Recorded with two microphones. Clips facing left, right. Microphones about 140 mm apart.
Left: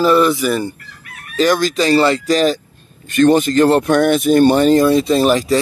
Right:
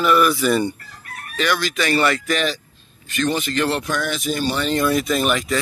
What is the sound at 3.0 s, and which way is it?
Speech, 50° left (ahead or behind).